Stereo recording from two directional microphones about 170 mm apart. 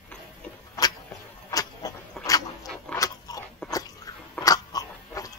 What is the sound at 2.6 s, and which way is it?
Keys jangling, centre (ahead or behind).